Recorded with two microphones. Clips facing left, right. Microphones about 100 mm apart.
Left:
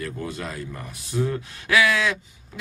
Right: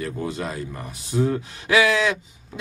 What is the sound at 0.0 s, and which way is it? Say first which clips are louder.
Speech: right 3 dB; 20° right (ahead or behind).